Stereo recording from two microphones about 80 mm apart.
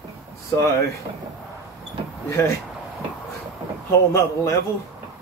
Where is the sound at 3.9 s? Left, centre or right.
Left.